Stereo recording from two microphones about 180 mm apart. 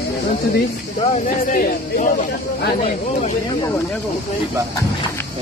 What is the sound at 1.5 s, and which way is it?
Speech, 50° left (ahead or behind).